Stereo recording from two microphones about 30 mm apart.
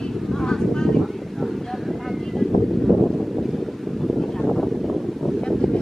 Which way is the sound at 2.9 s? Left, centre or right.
Centre.